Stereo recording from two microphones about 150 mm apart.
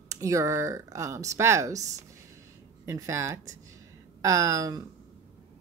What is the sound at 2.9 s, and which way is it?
A woman's voice, 20° right (ahead or behind).